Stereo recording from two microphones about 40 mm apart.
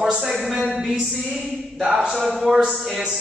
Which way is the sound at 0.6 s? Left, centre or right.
Right.